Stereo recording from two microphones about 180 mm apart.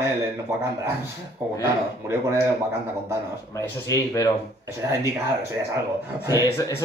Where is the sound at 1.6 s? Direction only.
15° right (ahead or behind).